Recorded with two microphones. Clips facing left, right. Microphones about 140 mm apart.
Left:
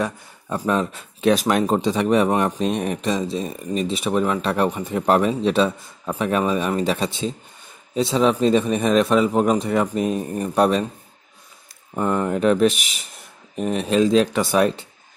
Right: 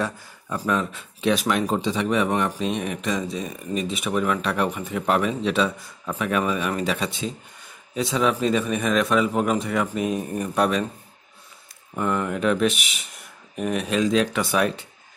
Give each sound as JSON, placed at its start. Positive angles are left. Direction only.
{"t": 0.5, "sound": "speech", "side_deg": 30}
{"t": 11.9, "sound": "speech", "side_deg": 30}
{"t": 13.6, "sound": "speech", "side_deg": 30}